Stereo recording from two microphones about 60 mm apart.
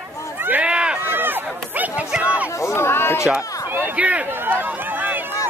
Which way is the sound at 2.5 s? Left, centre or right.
Left.